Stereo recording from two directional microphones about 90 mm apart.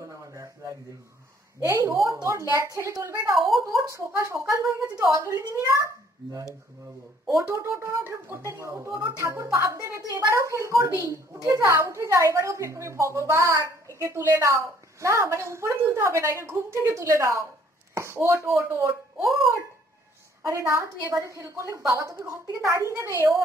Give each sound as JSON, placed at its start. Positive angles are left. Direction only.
{"t": 0.3, "sound": "a sound", "side_deg": -35}
{"t": 1.6, "sound": "a woman's voice", "side_deg": -35}
{"t": 3.3, "sound": "speech", "side_deg": 0}
{"t": 3.6, "sound": "a woman's voice", "side_deg": -35}
{"t": 7.2, "sound": "a woman's voice", "side_deg": -35}
{"t": 20.4, "sound": "a woman's voice", "side_deg": -30}